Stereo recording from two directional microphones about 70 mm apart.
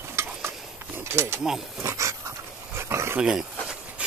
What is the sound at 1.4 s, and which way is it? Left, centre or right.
Speech, centre.